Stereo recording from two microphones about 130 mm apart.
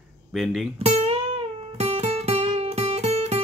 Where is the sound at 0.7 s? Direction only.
55° right (ahead or behind).